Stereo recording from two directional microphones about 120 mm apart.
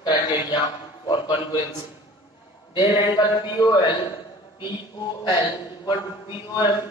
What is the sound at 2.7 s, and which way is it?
A man's voice, 40° left (ahead or behind).